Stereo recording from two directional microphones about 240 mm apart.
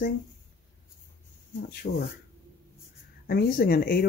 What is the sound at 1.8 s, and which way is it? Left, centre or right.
Speech, left.